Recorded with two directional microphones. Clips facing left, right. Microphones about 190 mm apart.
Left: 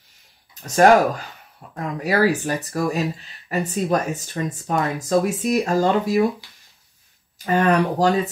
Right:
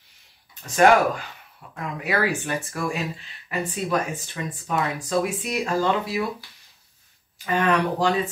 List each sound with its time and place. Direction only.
0.7 s speech: 40° left (ahead or behind)
7.4 s speech: 40° left (ahead or behind)